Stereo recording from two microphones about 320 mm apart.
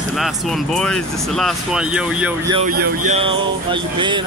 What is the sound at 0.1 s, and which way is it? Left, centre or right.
Speech, centre.